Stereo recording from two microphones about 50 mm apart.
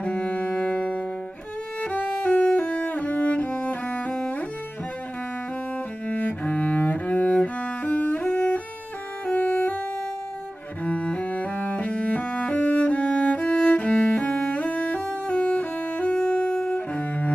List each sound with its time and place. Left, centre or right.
0.0 s music: left
2.6 s cello: left
6.0 s cello: left
8.1 s music: left
10.8 s cello: left
12.6 s music: left
15.0 s music: centre